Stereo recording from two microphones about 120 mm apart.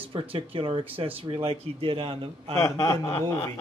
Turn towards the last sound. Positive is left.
turn(degrees=25)  # may be behind; listen again after turning